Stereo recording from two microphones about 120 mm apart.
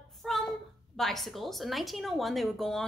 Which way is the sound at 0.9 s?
Centre (ahead or behind).